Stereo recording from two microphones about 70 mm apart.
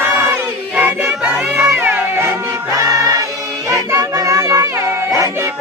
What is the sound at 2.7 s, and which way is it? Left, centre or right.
Choir, right.